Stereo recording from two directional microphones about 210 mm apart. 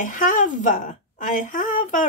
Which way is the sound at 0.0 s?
40° left (ahead or behind).